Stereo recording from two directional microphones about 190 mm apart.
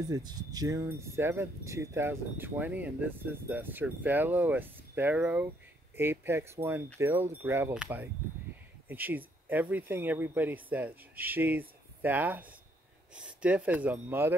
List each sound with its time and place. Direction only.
0.1 s speech: 20° right (ahead or behind)